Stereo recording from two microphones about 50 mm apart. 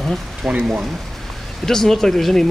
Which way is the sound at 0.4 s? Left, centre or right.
Centre.